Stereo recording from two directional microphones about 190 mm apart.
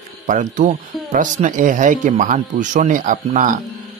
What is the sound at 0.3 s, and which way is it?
Speech, 40° right (ahead or behind).